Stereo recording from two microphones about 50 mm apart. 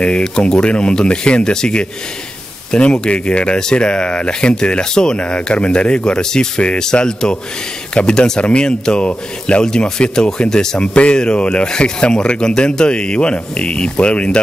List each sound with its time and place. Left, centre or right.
0.0 s speech: left